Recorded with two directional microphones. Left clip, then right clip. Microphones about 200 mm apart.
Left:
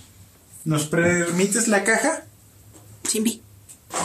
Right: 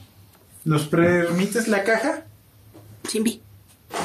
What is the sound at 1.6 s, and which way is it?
Speech, 25° left (ahead or behind).